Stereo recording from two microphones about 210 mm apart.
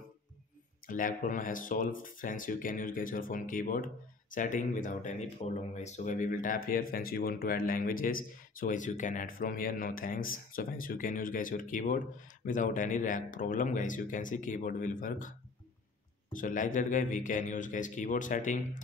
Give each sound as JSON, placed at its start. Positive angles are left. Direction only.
{"t": 0.8, "sound": "speech", "side_deg": 40}
{"t": 16.3, "sound": "speech", "side_deg": 40}